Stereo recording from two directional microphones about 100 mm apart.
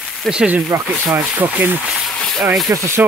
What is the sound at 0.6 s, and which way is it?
Speech, 25° right (ahead or behind).